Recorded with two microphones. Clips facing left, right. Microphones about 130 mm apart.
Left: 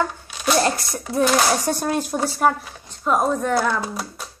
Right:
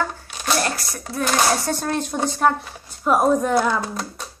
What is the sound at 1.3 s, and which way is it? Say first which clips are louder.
Speech: left 1 dB; 15° left (ahead or behind).